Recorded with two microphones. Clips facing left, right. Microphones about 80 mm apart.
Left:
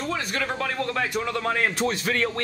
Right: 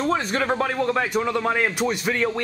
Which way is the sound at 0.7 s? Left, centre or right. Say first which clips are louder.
Right 4 dB; centre.